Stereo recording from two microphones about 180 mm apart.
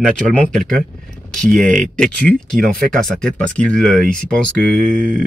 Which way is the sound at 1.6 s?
45° right (ahead or behind).